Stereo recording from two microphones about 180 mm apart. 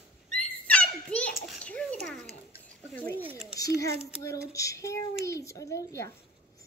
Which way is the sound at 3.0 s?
10° left (ahead or behind).